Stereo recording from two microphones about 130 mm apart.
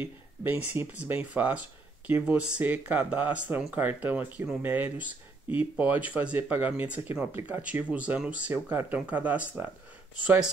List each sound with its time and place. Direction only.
0.0 s speech: 15° right (ahead or behind)